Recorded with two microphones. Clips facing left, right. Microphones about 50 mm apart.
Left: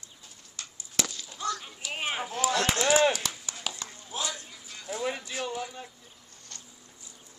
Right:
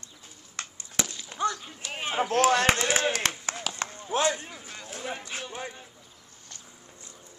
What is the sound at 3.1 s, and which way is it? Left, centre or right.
Clapping, right.